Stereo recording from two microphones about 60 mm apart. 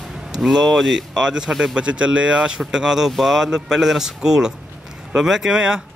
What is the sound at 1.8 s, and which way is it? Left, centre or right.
Speech, centre.